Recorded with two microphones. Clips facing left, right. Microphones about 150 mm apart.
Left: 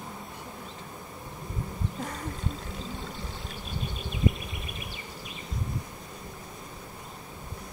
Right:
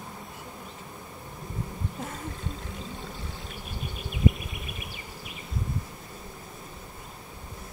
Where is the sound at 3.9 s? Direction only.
25° left (ahead or behind).